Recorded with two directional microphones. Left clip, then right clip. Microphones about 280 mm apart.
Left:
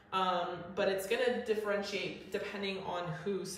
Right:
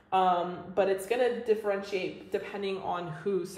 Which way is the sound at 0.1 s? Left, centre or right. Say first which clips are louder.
Right 7 dB; right.